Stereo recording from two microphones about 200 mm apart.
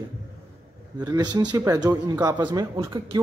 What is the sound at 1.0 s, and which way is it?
A man's voice, 20° right (ahead or behind).